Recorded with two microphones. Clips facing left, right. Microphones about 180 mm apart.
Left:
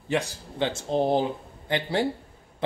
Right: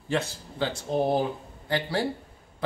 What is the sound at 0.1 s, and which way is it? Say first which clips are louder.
Speech: left 1 dB; 15° left (ahead or behind).